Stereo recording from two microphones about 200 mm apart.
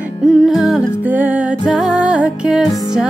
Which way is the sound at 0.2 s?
Centre (ahead or behind).